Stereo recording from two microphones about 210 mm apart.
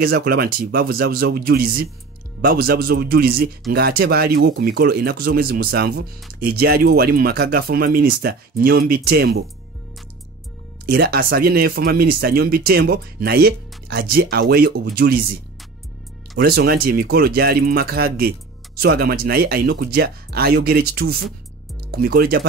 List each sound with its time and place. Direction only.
0.0 s speech: 45° right (ahead or behind)
10.9 s speech: 50° right (ahead or behind)
16.3 s speech: 50° right (ahead or behind)